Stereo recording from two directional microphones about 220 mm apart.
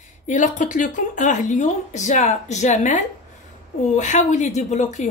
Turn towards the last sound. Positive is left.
turn(degrees=30)  # may be behind; listen again after turning